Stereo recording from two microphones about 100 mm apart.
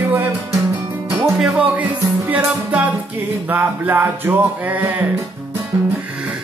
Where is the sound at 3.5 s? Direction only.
20° right (ahead or behind).